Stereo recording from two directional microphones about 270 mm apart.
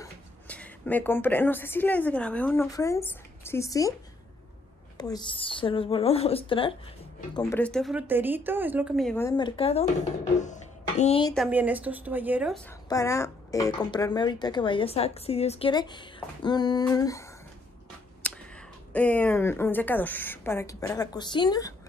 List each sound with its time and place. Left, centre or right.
0.0 s speech: centre
4.9 s a woman's voice: centre
7.3 s a woman's voice: centre
9.6 s a woman's voice: left
11.3 s a woman's voice: centre
12.6 s a woman's voice: centre
18.2 s a sound: centre
18.9 s a woman's voice: centre